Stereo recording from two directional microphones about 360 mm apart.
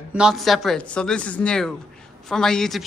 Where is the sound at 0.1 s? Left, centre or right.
Centre.